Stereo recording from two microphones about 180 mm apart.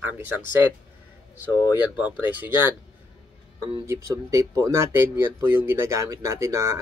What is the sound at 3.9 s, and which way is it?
Speech, 15° right (ahead or behind).